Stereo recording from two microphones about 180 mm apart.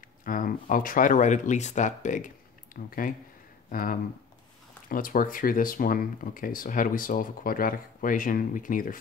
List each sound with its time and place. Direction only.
0.2 s speech: 50° left (ahead or behind)